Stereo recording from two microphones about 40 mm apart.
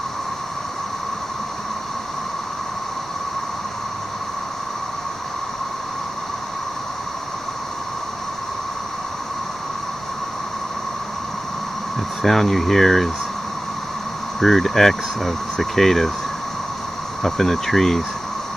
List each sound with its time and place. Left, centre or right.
12.2 s speech: centre
14.4 s speech: centre
17.2 s speech: centre